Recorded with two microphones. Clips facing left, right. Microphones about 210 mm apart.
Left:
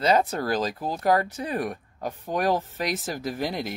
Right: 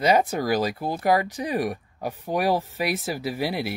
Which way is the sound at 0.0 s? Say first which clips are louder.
Right 2 dB; 10° right (ahead or behind).